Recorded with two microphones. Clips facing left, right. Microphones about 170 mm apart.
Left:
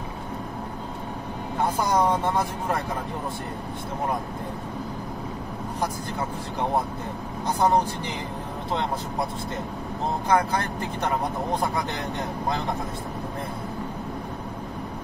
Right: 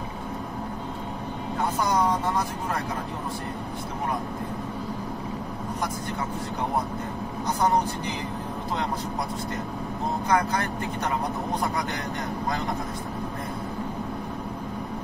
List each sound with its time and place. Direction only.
1.9 s speech: 25° left (ahead or behind)
10.2 s speech: 30° left (ahead or behind)